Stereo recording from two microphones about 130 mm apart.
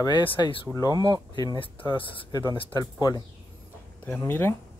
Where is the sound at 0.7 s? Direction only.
25° left (ahead or behind).